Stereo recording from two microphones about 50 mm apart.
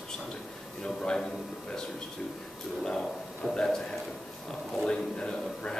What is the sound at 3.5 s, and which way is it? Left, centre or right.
Speech, centre.